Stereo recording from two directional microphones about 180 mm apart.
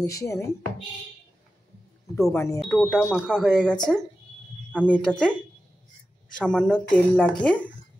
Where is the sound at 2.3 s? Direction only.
15° left (ahead or behind).